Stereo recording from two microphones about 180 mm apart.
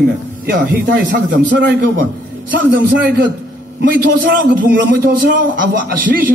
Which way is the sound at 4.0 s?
55° right (ahead or behind).